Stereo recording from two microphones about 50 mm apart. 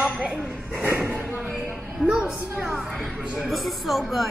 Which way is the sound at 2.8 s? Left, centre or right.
Centre.